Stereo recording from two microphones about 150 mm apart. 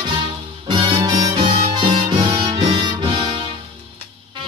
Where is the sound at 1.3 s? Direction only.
40° right (ahead or behind).